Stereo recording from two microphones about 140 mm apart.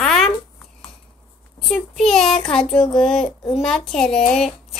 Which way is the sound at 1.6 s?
Centre (ahead or behind).